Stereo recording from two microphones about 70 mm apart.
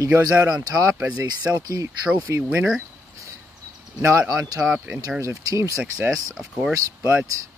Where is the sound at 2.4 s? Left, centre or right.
Right.